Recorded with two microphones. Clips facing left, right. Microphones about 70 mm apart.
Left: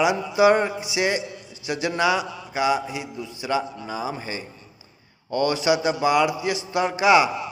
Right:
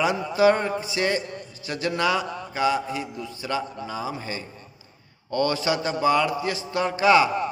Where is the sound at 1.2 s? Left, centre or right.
Right.